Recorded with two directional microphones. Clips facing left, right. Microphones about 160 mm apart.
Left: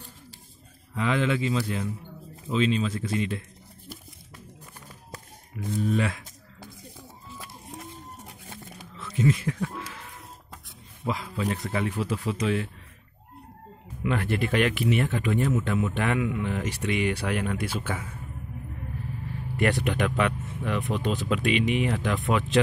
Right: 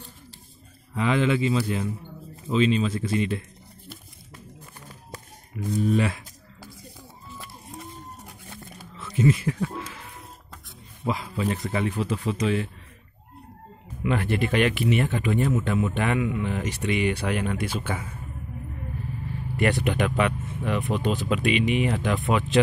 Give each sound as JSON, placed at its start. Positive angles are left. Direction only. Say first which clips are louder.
{"t": 0.9, "sound": "speech", "louder": "right 3 dB", "side_deg": -5}
{"t": 5.5, "sound": "speech", "louder": "right 3 dB", "side_deg": -10}
{"t": 8.9, "sound": "speech", "louder": "right 2 dB", "side_deg": -5}
{"t": 11.1, "sound": "speech", "louder": "right 2 dB", "side_deg": -5}
{"t": 14.0, "sound": "speech", "louder": "right 2 dB", "side_deg": 0}
{"t": 19.5, "sound": "speech", "louder": "right 1 dB", "side_deg": 0}